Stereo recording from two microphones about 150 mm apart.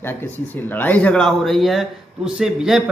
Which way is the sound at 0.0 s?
10° left (ahead or behind).